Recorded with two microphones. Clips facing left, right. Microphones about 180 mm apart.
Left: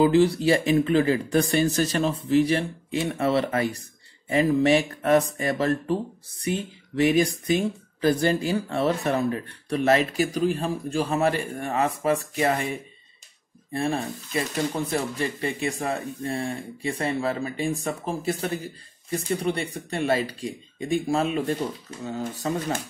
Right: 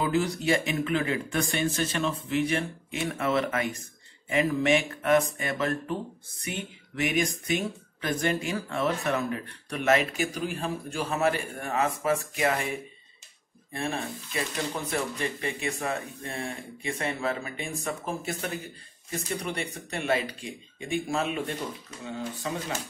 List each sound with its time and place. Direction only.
0.0 s speech: 30° left (ahead or behind)
13.7 s speech: 35° left (ahead or behind)